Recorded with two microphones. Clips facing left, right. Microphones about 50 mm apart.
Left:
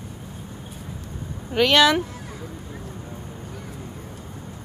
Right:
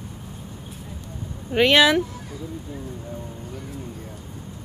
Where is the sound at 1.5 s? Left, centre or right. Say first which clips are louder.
Right 1 dB; centre.